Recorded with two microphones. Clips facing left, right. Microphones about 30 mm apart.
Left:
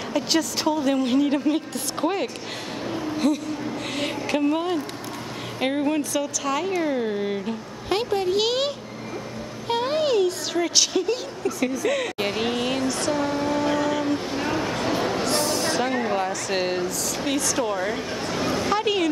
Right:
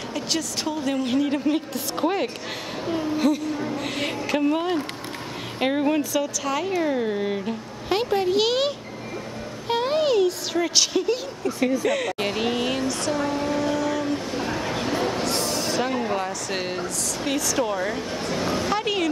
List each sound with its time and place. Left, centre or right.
0.1 s a woman's voice: centre
11.9 s vehicle: centre
14.9 s a sound: centre
17.2 s a woman's voice: centre